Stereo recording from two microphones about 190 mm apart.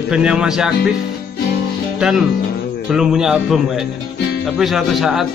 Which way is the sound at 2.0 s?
5° right (ahead or behind).